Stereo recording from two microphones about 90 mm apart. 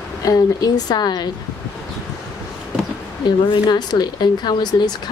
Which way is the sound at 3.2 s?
55° left (ahead or behind).